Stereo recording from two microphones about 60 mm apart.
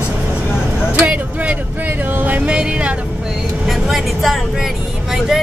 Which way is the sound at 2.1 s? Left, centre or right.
Right.